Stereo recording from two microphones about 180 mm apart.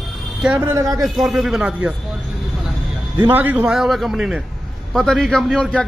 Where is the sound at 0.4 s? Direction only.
10° right (ahead or behind).